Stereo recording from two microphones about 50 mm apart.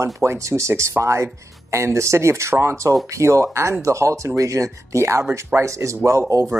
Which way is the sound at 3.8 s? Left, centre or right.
Right.